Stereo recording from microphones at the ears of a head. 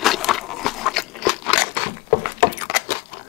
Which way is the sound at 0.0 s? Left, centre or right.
Left.